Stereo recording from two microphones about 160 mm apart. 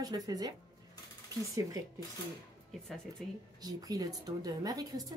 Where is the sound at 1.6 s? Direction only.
20° right (ahead or behind).